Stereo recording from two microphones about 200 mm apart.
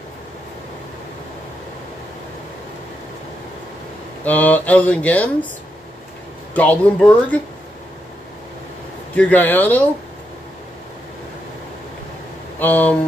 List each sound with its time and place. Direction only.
4.2 s speech: 10° left (ahead or behind)
6.5 s speech: 5° left (ahead or behind)
9.1 s speech: 5° left (ahead or behind)
12.5 s speech: 10° left (ahead or behind)